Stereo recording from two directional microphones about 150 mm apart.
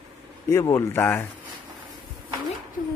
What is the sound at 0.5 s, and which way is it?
Speech, 20° left (ahead or behind).